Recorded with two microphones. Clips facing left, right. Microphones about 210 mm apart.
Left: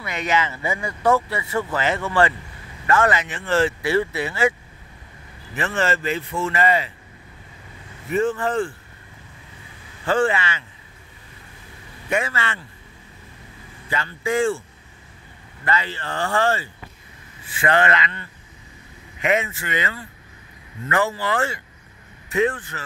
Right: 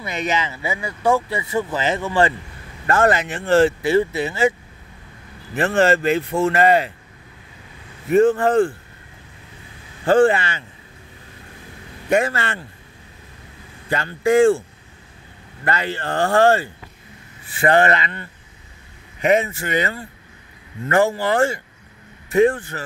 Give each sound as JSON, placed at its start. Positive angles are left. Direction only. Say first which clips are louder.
{"t": 0.0, "sound": "speech", "louder": "even", "side_deg": -20}
{"t": 2.9, "sound": "speech", "louder": "right 2 dB", "side_deg": -50}
{"t": 3.8, "sound": "speech", "louder": "right 4 dB", "side_deg": -20}
{"t": 5.7, "sound": "speech", "louder": "right 7 dB", "side_deg": -50}
{"t": 8.1, "sound": "speech", "louder": "right 7 dB", "side_deg": -50}
{"t": 10.0, "sound": "speech", "louder": "right 6 dB", "side_deg": -50}
{"t": 12.3, "sound": "speech", "louder": "right 3 dB", "side_deg": -55}
{"t": 13.8, "sound": "speech", "louder": "right 6 dB", "side_deg": -45}
{"t": 15.6, "sound": "speech", "louder": "right 2 dB", "side_deg": -50}
{"t": 17.6, "sound": "speech", "louder": "right 4 dB", "side_deg": -40}
{"t": 19.2, "sound": "speech", "louder": "right 5 dB", "side_deg": -40}